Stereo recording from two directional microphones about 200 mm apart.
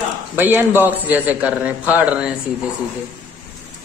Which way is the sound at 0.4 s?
10° right (ahead or behind).